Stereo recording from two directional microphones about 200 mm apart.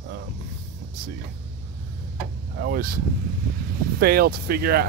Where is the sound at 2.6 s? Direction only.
50° right (ahead or behind).